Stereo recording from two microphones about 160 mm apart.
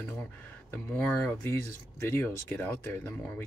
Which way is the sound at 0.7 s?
10° left (ahead or behind).